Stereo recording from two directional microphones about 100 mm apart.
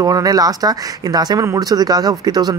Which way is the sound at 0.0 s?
35° right (ahead or behind).